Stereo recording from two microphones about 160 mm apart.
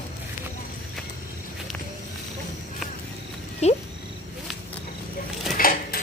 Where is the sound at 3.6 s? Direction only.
40° left (ahead or behind).